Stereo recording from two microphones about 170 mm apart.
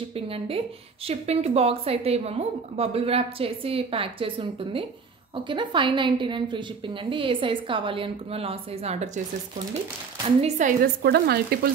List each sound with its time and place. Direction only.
0.1 s a woman's voice: 35° right (ahead or behind)
10.2 s a woman's voice: 40° right (ahead or behind)
11.0 s speech: 70° right (ahead or behind)